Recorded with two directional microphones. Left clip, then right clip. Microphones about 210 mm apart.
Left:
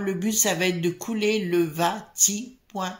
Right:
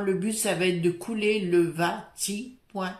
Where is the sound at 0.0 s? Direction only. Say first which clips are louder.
Left 2 dB; 35° left (ahead or behind).